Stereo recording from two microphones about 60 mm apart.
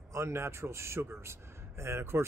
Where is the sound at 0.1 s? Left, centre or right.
Right.